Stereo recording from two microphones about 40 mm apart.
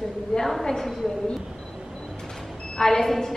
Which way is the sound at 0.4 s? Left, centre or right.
Centre.